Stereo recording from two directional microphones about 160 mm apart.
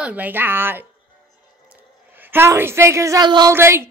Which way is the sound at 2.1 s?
15° right (ahead or behind).